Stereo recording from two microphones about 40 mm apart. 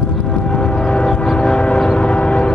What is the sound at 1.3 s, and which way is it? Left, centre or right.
Train, left.